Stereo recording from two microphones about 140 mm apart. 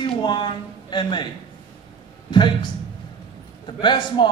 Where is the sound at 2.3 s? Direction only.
35° left (ahead or behind).